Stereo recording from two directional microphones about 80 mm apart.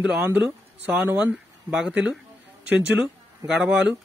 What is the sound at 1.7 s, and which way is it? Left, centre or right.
A man's voice, centre.